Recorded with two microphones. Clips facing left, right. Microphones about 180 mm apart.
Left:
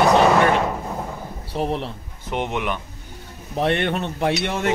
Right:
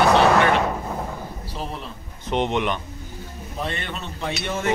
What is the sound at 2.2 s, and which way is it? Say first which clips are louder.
Speech: right 2 dB; 10° left (ahead or behind).